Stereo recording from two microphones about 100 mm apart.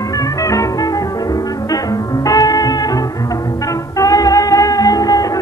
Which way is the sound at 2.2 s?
40° left (ahead or behind).